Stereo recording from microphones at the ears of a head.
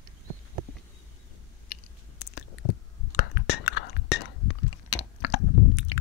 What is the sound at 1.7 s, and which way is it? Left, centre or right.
Chewing, left.